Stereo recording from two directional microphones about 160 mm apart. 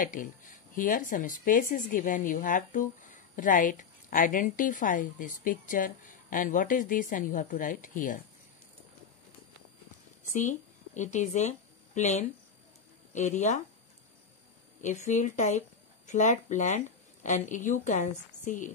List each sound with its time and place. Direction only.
0.0 s speech: 55° left (ahead or behind)
11.0 s speech: 50° left (ahead or behind)
14.8 s speech: 50° left (ahead or behind)